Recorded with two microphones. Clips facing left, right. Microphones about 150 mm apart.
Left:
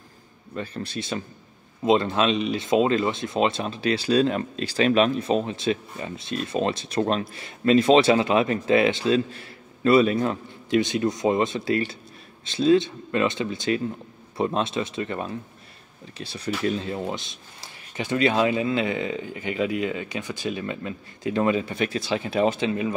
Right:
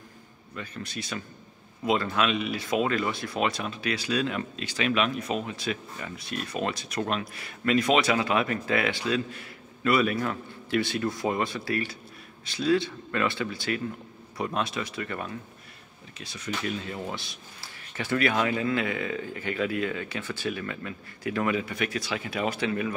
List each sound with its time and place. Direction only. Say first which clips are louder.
0.6 s speech: left 6 dB; 30° left (ahead or behind)